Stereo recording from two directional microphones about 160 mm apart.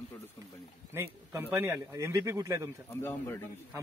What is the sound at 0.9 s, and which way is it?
A man's voice, 15° right (ahead or behind).